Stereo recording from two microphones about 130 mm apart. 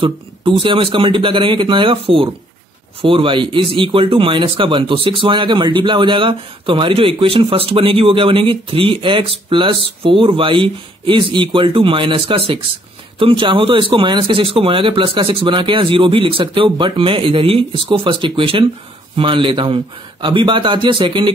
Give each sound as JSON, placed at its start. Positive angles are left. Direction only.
{"t": 0.0, "sound": "speech", "side_deg": -40}